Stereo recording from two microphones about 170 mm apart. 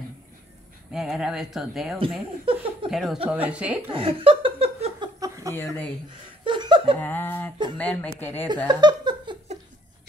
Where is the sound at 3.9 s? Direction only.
30° right (ahead or behind).